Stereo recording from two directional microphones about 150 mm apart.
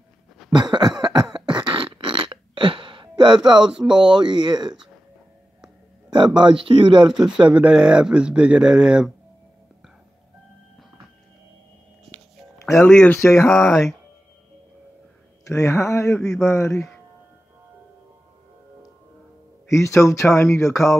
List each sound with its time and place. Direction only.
0.5 s cough: 30° right (ahead or behind)
1.5 s burping: 30° right (ahead or behind)
3.4 s speech: 30° right (ahead or behind)
6.1 s speech: 30° right (ahead or behind)
7.1 s speech: 5° right (ahead or behind)
12.8 s speech: 10° left (ahead or behind)
13.5 s speech: 5° left (ahead or behind)
15.4 s speech: 20° left (ahead or behind)
19.7 s speech: 20° left (ahead or behind)